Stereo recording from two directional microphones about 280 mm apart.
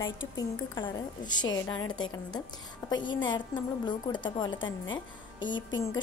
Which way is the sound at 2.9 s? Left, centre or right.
Centre.